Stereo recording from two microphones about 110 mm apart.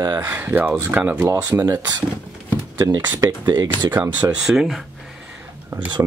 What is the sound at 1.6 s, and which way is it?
Speech, 35° right (ahead or behind).